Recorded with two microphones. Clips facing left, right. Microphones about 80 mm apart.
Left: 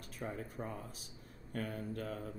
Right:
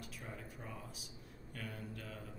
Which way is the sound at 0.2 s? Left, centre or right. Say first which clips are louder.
Left 11 dB; left.